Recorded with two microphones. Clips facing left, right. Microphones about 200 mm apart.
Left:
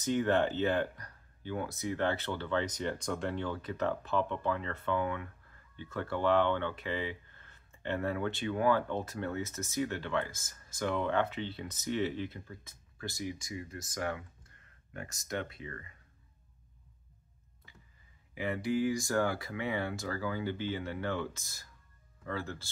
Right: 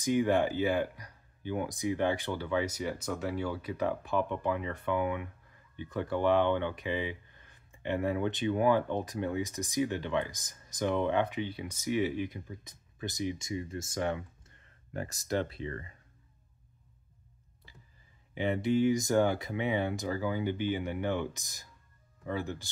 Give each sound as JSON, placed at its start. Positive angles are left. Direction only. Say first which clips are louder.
{"t": 0.0, "sound": "speech", "louder": "right 2 dB", "side_deg": -10}
{"t": 18.3, "sound": "speech", "louder": "right 4 dB", "side_deg": -25}